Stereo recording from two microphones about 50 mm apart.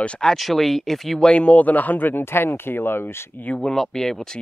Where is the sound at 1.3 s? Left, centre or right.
Left.